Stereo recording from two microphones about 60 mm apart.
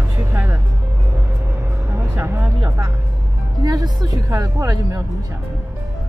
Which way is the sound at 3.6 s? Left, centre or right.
Right.